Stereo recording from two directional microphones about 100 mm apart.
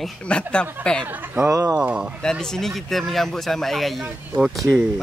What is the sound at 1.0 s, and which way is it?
Speech, 20° right (ahead or behind).